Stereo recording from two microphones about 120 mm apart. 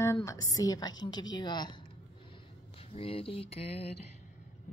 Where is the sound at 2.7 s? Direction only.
55° left (ahead or behind).